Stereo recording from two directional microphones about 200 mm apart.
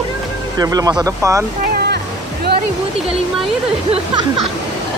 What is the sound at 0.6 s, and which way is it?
Speech, 20° right (ahead or behind).